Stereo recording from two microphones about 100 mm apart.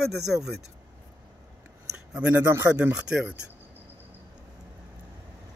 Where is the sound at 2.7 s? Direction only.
15° right (ahead or behind).